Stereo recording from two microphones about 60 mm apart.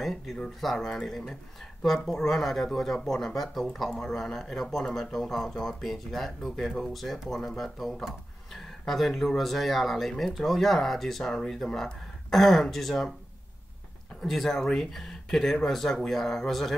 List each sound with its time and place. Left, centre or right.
0.0 s speech: centre
14.2 s speech: centre